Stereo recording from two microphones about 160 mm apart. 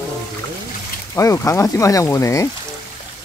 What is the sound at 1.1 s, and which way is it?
Speech, 20° left (ahead or behind).